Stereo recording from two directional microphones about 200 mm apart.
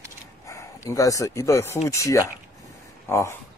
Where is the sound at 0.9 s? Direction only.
15° left (ahead or behind).